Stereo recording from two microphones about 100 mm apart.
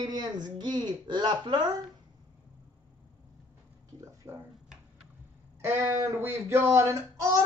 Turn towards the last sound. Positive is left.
turn(degrees=-30)  # may be behind; listen again after turning